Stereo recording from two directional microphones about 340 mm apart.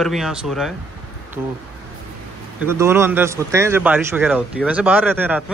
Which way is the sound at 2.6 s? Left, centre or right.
Centre.